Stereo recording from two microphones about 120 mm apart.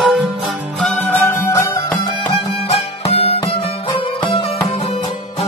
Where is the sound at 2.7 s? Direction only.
55° left (ahead or behind).